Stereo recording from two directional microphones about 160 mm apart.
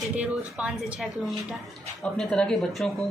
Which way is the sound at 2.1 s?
5° left (ahead or behind).